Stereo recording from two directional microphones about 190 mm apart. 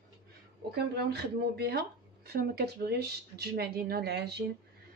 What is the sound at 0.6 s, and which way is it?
A woman's voice, 55° right (ahead or behind).